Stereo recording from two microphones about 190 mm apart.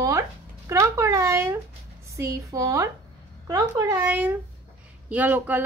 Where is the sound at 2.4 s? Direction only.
15° right (ahead or behind).